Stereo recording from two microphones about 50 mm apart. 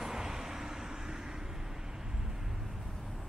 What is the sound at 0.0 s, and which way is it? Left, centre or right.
Vehicle, centre.